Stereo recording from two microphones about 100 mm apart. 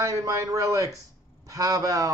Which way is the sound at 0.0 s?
35° right (ahead or behind).